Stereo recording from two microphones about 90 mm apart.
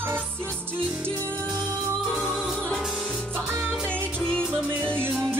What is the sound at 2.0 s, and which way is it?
Music, 15° left (ahead or behind).